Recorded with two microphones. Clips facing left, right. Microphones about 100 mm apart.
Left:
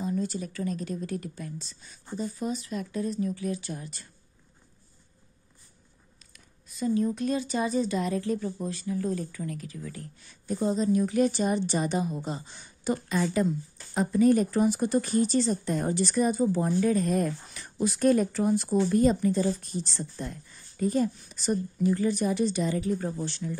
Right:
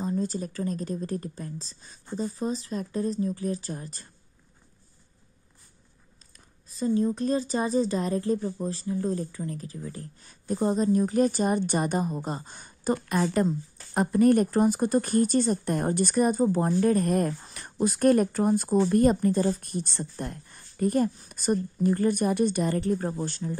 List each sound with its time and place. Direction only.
0.0 s speech: 35° right (ahead or behind)
6.3 s speech: 35° right (ahead or behind)